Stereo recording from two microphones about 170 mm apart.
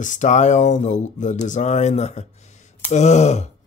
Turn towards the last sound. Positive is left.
turn(degrees=40)  # may be behind; listen again after turning